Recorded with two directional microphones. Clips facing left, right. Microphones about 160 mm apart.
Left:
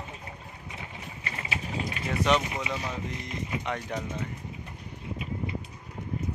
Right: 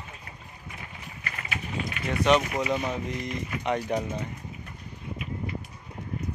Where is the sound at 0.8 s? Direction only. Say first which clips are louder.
Left 2 dB; 25° left (ahead or behind).